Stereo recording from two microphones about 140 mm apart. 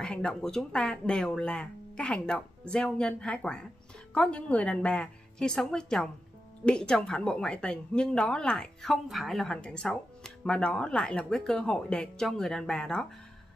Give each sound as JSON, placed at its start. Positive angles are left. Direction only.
{"t": 0.0, "sound": "a woman's voice", "side_deg": 5}